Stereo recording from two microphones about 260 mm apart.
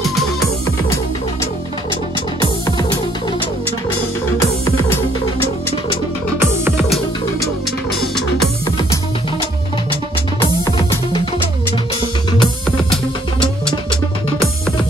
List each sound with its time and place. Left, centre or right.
6.4 s music: centre
10.6 s music: centre